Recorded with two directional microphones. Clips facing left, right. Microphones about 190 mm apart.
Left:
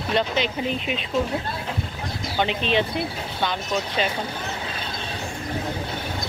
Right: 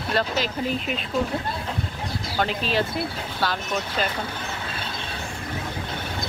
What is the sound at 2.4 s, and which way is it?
Speech, centre (ahead or behind).